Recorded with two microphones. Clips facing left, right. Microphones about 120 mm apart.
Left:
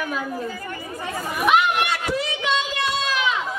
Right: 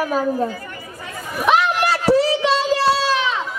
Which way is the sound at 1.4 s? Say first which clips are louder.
Right 2 dB; 35° right (ahead or behind).